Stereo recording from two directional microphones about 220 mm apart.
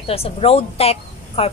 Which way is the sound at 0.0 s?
25° left (ahead or behind).